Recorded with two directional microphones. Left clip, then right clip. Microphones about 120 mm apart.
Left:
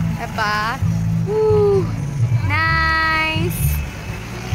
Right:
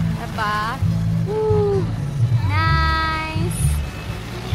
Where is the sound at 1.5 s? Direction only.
25° left (ahead or behind).